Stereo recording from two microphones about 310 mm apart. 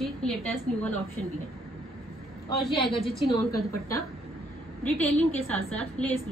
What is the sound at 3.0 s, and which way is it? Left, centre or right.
A woman's voice, centre.